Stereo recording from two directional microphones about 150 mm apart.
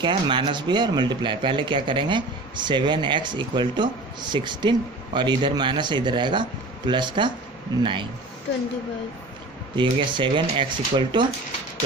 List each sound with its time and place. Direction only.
0.0 s speech: 35° right (ahead or behind)
9.8 s speech: 30° right (ahead or behind)